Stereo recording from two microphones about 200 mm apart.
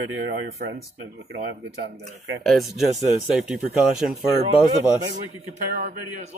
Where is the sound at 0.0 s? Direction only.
70° right (ahead or behind).